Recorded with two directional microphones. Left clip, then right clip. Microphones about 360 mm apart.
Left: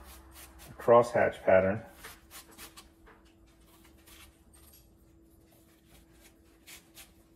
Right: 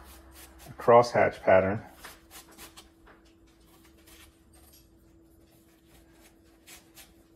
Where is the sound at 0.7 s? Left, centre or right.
Right.